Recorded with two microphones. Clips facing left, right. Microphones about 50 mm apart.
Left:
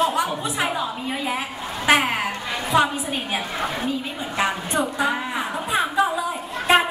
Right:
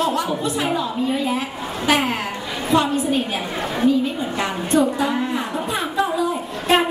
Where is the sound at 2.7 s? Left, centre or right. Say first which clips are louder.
Right 3 dB; centre.